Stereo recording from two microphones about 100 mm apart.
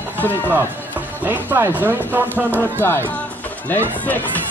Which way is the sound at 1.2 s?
20° right (ahead or behind).